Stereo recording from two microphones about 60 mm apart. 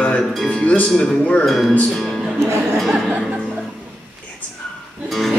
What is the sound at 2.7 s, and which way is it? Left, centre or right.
Music, centre.